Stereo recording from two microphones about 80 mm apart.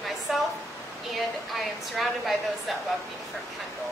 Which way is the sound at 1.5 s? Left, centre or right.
Centre.